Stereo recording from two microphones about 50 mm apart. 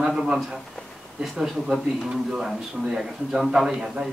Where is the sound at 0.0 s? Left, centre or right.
Centre.